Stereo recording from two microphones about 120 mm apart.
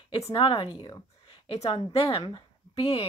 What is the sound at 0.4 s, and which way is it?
Speech, 45° left (ahead or behind).